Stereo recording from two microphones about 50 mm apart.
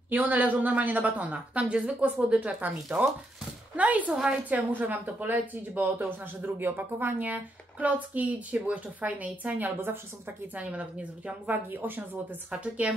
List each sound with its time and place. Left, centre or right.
0.1 s a woman's voice: right
4.1 s a woman's voice: centre
4.7 s a woman's voice: right
9.8 s a woman's voice: right
10.5 s a woman's voice: right
11.7 s speech: right
12.4 s a woman's voice: right